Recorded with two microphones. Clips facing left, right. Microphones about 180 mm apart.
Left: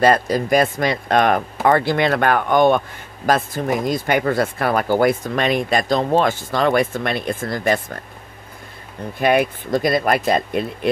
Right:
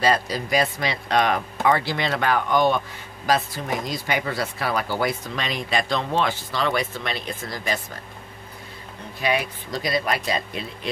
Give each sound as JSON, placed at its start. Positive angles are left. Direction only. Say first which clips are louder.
{"t": 0.0, "sound": "speech", "louder": "left 6 dB", "side_deg": 50}
{"t": 9.2, "sound": "speech", "louder": "left 8 dB", "side_deg": 55}